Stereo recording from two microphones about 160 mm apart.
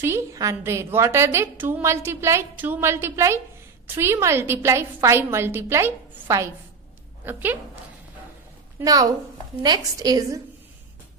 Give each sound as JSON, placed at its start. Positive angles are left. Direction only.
{"t": 0.0, "sound": "a woman's voice", "side_deg": -20}
{"t": 8.7, "sound": "a woman's voice", "side_deg": -20}